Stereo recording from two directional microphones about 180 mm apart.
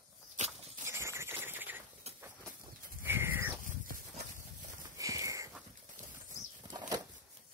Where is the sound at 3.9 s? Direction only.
45° right (ahead or behind).